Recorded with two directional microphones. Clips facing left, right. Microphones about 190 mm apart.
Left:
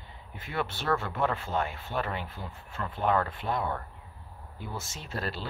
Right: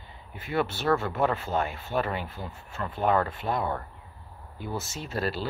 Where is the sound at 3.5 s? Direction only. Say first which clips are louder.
Right 2 dB; 25° right (ahead or behind).